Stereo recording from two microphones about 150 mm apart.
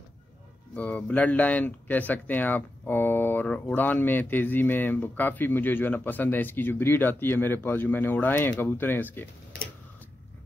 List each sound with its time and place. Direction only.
0.7 s speech: 10° left (ahead or behind)